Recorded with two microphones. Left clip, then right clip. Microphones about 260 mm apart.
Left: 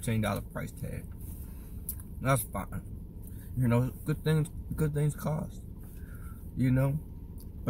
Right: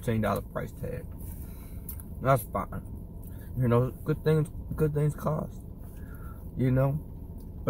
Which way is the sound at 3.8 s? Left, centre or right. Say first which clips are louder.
Right 5 dB; centre.